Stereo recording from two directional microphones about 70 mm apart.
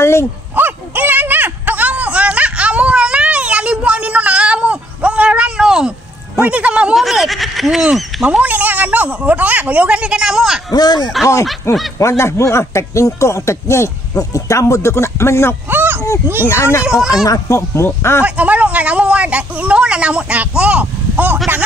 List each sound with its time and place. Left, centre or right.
0.0 s a sound: left
0.6 s a sound: right; by 5.9 s centre
6.4 s speech: centre
7.0 s speech: centre
8.2 s speech: centre
10.7 s speech: left
11.7 s speech: left
15.7 s a sound: right
16.4 s speech: left
16.8 s speech: centre
17.1 s speech: left
17.8 s speech: left
18.2 s speech: centre